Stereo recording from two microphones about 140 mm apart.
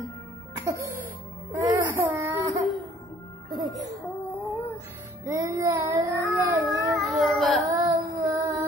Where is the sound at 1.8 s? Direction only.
15° right (ahead or behind).